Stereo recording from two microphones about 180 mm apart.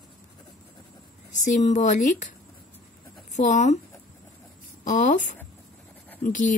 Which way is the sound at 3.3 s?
40° left (ahead or behind).